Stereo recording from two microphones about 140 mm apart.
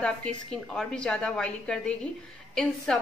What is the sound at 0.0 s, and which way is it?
A woman's voice, 5° left (ahead or behind).